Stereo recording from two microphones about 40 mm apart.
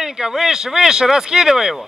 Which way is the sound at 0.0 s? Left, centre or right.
Centre.